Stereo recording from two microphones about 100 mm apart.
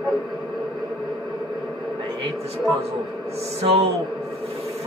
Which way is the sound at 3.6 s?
90° right.